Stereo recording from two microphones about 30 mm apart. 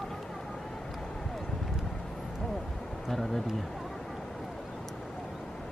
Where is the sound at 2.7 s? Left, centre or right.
Centre.